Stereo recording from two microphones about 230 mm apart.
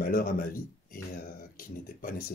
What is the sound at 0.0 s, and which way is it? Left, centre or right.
Speech, left.